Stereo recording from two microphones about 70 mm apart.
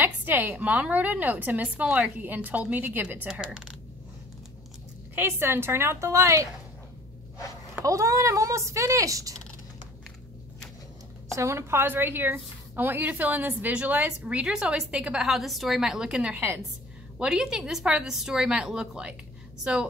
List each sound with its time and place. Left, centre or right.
0.0 s a woman's voice: right
3.3 s a woman's voice: centre
5.1 s a woman's voice: right
7.8 s speech: right
11.3 s a woman's voice: right; by 15.2 s centre
15.2 s a woman's voice: centre